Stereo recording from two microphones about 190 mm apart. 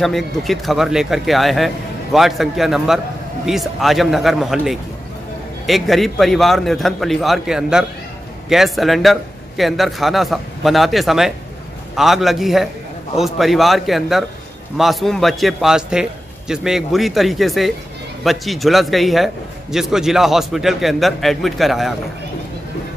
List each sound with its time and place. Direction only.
0.0 s a man's voice: centre (ahead or behind)